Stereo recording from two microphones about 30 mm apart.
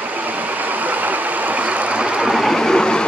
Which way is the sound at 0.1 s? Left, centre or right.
Right.